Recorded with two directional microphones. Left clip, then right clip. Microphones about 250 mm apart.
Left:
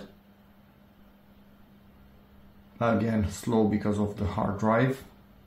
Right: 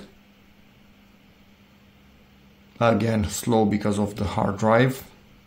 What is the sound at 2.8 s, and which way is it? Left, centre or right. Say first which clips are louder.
Speech: right 6 dB; right.